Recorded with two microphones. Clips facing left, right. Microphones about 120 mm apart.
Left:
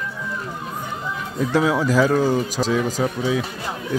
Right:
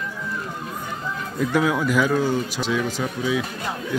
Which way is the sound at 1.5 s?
30° left (ahead or behind).